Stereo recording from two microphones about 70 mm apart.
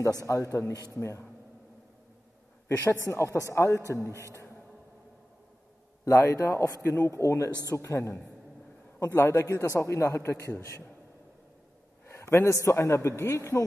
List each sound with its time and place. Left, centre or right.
0.3 s a man's voice: left
2.8 s speech: left
6.3 s a man's voice: left
12.1 s a sound: left
12.6 s speech: left